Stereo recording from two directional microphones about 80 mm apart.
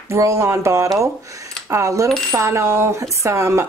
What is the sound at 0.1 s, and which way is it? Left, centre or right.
A woman's voice, right.